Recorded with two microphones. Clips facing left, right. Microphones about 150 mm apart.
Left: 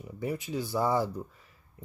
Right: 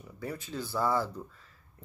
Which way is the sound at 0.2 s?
15° left (ahead or behind).